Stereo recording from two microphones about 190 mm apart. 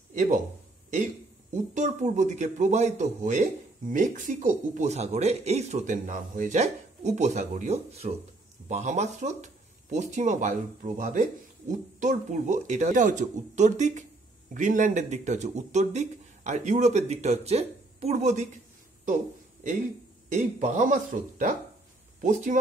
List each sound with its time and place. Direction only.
0.1 s speech: 40° right (ahead or behind)
1.5 s speech: 40° right (ahead or behind)
20.3 s speech: 40° right (ahead or behind)